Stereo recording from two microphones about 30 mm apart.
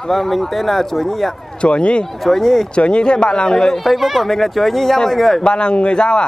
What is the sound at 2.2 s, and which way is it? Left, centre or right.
Speech, centre.